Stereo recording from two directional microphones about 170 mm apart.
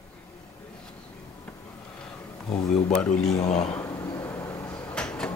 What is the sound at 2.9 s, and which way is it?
Speech, 5° left (ahead or behind).